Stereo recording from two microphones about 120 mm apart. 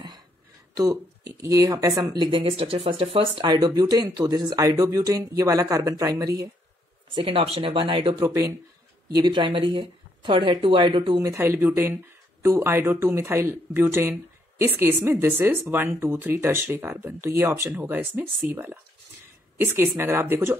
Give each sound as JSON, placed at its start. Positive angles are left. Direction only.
{"t": 0.7, "sound": "speech", "side_deg": -30}
{"t": 2.5, "sound": "speech", "side_deg": -55}
{"t": 7.2, "sound": "speech", "side_deg": -50}
{"t": 9.1, "sound": "speech", "side_deg": -40}
{"t": 11.2, "sound": "speech", "side_deg": -20}